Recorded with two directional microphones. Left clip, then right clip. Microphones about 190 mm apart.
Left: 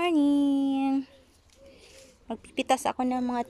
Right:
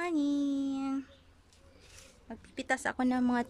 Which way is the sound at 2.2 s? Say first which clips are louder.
Left 8 dB; 10° left (ahead or behind).